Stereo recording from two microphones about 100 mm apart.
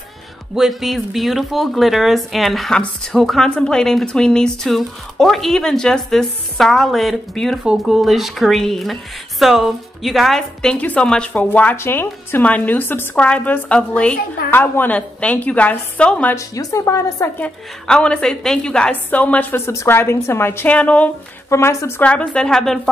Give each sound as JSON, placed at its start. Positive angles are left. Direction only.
{"t": 0.6, "sound": "a woman's voice", "side_deg": 0}
{"t": 16.3, "sound": "a woman's voice", "side_deg": 30}
{"t": 17.4, "sound": "a woman's voice", "side_deg": 10}
{"t": 21.5, "sound": "a woman's voice", "side_deg": 25}
{"t": 22.0, "sound": "a woman's voice", "side_deg": 10}